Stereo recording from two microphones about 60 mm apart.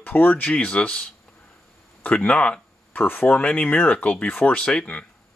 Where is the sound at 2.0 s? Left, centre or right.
Centre.